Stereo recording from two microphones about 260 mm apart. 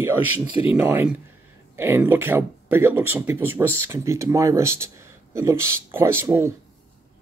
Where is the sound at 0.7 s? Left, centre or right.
Centre.